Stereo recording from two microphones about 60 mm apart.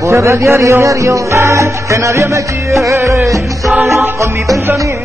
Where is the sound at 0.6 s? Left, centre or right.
Right.